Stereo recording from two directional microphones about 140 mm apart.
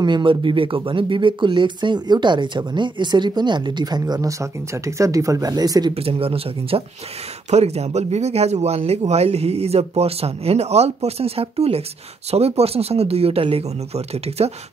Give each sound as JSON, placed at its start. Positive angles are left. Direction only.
{"t": 0.0, "sound": "speech", "side_deg": -35}
{"t": 5.9, "sound": "speech", "side_deg": -45}